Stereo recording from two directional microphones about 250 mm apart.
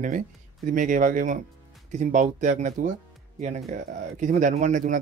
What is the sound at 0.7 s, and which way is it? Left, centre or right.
Speech, right.